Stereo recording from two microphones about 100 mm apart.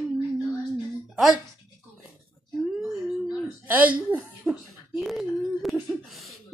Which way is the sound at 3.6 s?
15° right (ahead or behind).